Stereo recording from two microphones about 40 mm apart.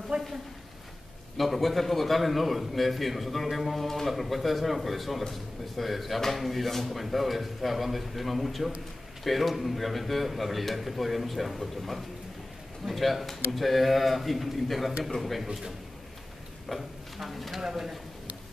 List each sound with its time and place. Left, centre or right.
0.1 s a sound: right
1.3 s speech: centre
15.4 s speech: centre